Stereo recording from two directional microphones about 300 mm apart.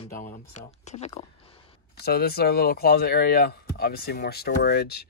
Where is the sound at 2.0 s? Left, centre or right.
Left.